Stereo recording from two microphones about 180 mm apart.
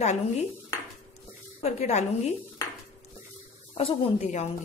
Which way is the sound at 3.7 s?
30° left (ahead or behind).